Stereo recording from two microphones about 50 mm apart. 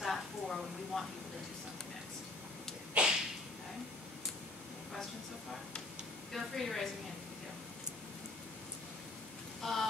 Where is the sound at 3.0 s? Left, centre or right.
Right.